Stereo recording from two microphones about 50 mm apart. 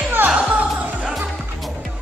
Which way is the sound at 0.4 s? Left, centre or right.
Right.